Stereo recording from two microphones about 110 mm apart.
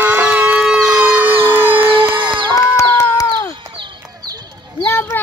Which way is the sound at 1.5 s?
20° right (ahead or behind).